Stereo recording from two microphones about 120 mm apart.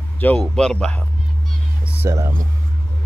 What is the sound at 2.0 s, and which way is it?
Speech, 20° right (ahead or behind).